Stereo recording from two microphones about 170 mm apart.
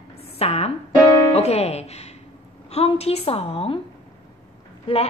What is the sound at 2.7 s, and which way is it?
A woman's voice, 35° left (ahead or behind).